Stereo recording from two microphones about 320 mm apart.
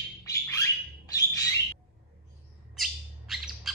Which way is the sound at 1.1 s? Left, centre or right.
Centre.